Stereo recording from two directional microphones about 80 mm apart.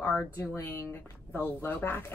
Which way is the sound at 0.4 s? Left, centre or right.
Left.